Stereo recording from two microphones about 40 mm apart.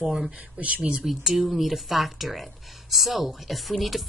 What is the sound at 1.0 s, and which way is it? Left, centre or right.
A woman's voice, centre.